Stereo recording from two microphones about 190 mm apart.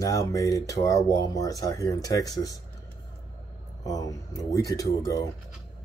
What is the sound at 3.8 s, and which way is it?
Speech, 20° left (ahead or behind).